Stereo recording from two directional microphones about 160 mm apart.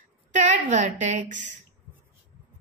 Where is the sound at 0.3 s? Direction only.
50° right (ahead or behind).